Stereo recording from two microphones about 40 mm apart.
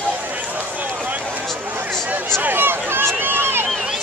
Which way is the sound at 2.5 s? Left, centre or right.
Right.